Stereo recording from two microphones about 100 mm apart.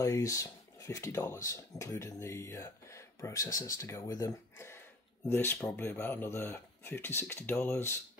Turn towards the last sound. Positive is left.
turn(degrees=25)  # may be behind; listen again after turning